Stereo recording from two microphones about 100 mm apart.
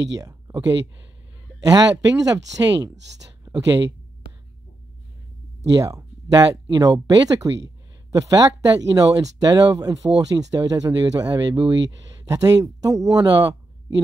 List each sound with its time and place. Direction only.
1.6 s speech: 40° right (ahead or behind)
5.7 s speech: 35° right (ahead or behind)